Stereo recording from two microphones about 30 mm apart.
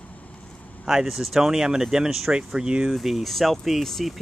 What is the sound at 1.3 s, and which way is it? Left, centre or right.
Speech, centre.